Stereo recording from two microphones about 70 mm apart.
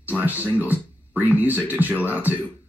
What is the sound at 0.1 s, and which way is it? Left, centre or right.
Speech, right.